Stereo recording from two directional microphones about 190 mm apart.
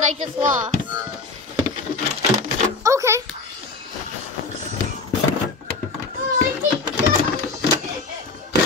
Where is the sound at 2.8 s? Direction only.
15° right (ahead or behind).